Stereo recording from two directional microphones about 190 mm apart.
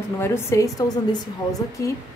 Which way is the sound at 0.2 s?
15° left (ahead or behind).